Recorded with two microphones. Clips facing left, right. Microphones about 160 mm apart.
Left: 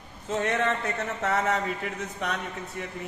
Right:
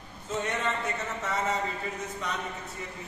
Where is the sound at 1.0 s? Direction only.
65° left (ahead or behind).